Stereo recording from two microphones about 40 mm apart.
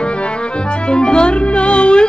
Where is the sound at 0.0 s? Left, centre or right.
Left.